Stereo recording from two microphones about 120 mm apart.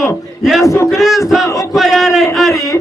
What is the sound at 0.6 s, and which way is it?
Speech, 25° left (ahead or behind).